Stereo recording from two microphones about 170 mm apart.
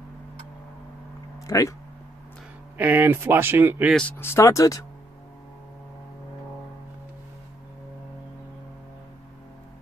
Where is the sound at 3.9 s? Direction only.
5° left (ahead or behind).